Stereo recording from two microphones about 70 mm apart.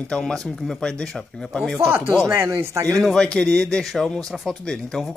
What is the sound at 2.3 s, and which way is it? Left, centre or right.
Speech, right.